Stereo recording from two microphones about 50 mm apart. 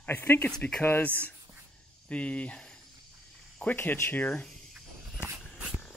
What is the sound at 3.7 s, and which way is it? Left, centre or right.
Speech, left.